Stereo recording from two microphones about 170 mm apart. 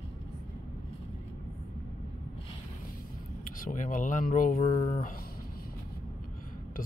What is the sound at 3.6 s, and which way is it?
Speech, 50° left (ahead or behind).